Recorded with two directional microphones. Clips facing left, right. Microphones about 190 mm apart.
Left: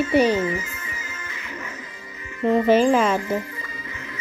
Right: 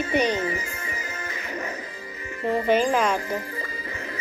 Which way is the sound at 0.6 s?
35° right (ahead or behind).